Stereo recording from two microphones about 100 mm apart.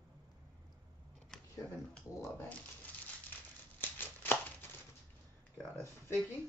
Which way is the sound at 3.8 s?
20° left (ahead or behind).